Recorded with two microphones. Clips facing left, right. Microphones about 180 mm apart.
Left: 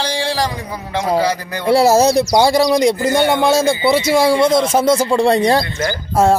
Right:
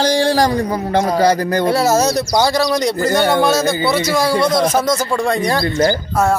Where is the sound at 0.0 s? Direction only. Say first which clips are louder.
Right 5 dB; 45° right (ahead or behind).